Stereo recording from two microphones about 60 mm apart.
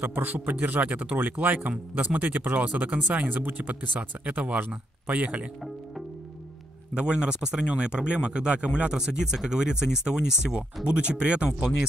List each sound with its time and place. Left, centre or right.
0.0 s speech: right
6.9 s speech: centre